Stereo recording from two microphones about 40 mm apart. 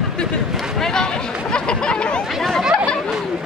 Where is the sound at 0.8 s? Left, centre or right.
Centre.